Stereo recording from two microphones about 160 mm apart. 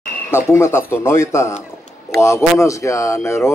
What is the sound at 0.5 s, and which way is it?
A man's voice, 15° left (ahead or behind).